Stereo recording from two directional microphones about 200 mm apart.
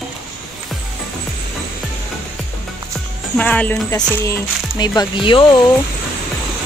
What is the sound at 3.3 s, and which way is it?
Speech, 5° left (ahead or behind).